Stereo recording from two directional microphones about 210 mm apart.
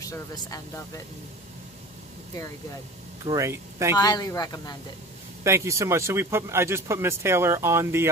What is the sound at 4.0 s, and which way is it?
Speech, 20° left (ahead or behind).